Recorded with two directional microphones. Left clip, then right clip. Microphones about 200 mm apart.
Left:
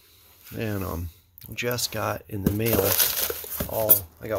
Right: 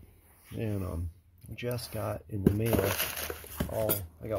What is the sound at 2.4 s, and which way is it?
Speech, 35° left (ahead or behind).